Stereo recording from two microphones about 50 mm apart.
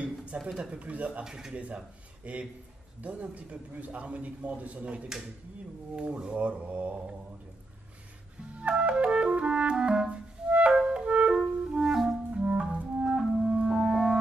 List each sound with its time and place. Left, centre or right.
0.0 s a sound: right
0.7 s speech: right
1.2 s speech: centre
1.5 s speech: right
8.5 s music: right
11.8 s clarinet: centre
12.3 s clarinet: right
13.0 s clarinet: centre